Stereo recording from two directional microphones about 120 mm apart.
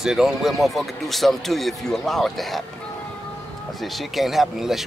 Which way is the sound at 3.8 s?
Centre (ahead or behind).